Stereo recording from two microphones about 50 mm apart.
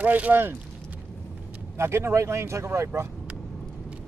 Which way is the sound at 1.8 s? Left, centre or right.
Right.